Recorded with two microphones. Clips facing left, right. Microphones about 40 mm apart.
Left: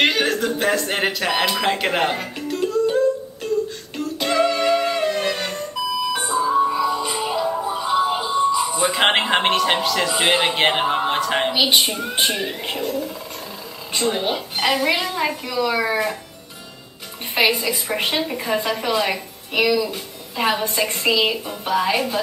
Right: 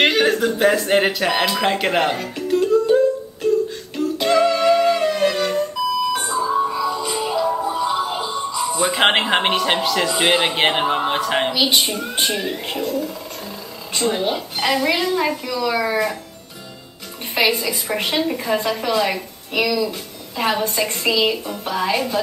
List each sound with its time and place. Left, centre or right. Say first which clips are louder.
0.0 s speech: right 3 dB; centre
2.4 s music: right 4 dB; centre
3.9 s a sound: right 4 dB; centre
6.1 s alarm clock: left 1 dB; centre
6.7 s music: left 1 dB; centre
8.5 s speech: even; centre
11.5 s a woman's voice: even; centre
17.8 s a woman's voice: right 4 dB; centre